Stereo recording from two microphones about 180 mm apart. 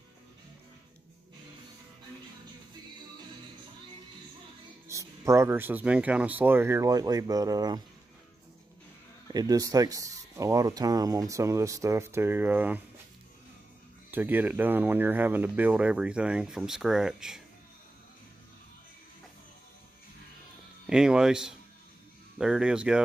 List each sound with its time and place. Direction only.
4.8 s speech: 15° right (ahead or behind)
9.3 s speech: 20° right (ahead or behind)
14.1 s speech: 10° right (ahead or behind)
20.8 s speech: 5° right (ahead or behind)